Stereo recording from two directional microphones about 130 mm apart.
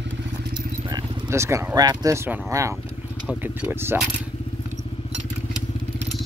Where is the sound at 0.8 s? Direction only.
35° right (ahead or behind).